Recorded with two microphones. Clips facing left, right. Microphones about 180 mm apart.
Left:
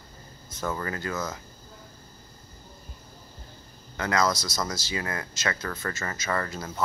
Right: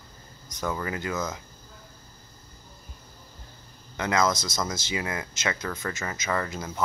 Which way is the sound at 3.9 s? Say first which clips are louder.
Right 1 dB; 20° right (ahead or behind).